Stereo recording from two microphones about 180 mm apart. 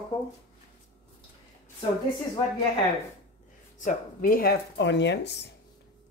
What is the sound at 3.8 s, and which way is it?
Speech, 45° left (ahead or behind).